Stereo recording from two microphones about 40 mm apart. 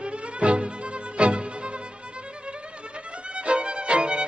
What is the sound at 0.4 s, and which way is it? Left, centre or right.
Music, right.